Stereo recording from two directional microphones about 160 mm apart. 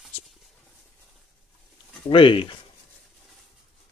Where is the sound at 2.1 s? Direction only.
30° left (ahead or behind).